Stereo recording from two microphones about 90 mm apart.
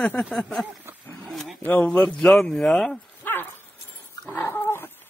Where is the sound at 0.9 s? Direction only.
30° right (ahead or behind).